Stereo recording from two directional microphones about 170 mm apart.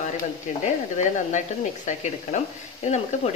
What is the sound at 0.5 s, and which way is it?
Speech, 45° left (ahead or behind).